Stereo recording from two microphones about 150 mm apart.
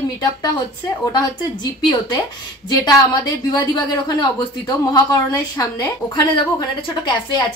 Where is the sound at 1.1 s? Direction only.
30° left (ahead or behind).